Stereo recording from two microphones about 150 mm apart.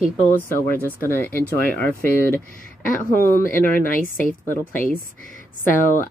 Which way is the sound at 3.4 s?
65° left (ahead or behind).